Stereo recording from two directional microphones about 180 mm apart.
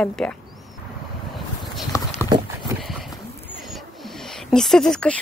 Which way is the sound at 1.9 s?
15° left (ahead or behind).